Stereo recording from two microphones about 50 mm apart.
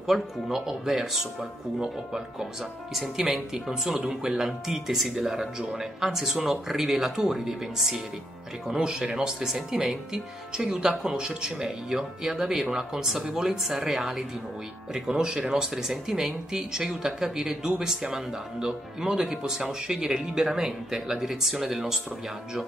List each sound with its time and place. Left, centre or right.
0.0 s speech: centre
2.9 s speech: centre
5.6 s speech: centre
5.9 s speech: centre